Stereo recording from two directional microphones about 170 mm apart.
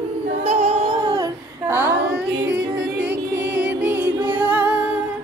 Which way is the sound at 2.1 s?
5° right (ahead or behind).